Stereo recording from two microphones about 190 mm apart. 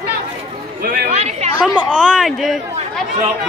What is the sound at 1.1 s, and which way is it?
Chatter, 35° right (ahead or behind).